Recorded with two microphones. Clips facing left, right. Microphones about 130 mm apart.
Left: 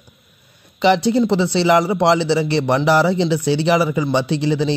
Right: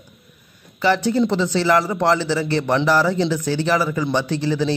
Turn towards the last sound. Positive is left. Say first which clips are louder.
# left 2 dB
turn(degrees=15)  # may be behind; listen again after turning